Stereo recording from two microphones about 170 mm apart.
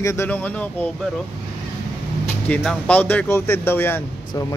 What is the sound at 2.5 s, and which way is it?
Speech, 5° left (ahead or behind).